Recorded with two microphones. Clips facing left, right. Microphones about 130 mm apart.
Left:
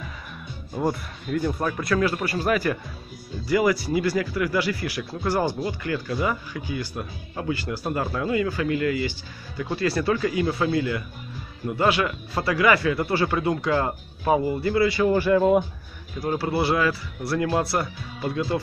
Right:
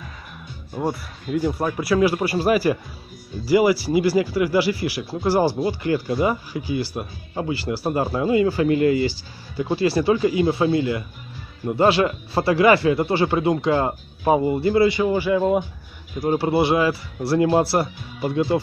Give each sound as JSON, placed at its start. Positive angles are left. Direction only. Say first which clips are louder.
{"t": 0.7, "sound": "speech", "louder": "even", "side_deg": -5}
{"t": 3.9, "sound": "speech", "louder": "right 5 dB", "side_deg": -25}
{"t": 16.2, "sound": "speech", "louder": "right 5 dB", "side_deg": -25}